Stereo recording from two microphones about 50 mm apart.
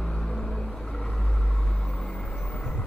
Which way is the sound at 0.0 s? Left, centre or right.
Centre.